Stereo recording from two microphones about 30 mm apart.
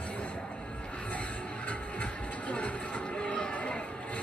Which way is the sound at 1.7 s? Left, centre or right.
Left.